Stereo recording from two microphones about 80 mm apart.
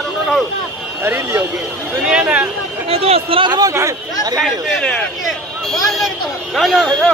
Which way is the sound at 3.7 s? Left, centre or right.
Right.